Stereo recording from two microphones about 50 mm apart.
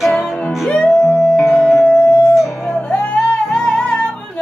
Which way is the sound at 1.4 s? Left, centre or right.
Centre.